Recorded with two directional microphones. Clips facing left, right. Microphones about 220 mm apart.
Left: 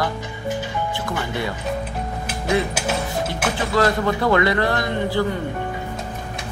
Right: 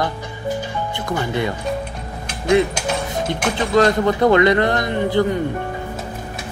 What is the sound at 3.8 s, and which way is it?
Speech, 20° right (ahead or behind).